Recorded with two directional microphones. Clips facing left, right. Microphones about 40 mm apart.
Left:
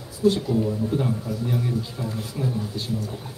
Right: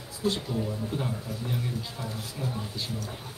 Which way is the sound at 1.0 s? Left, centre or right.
Centre.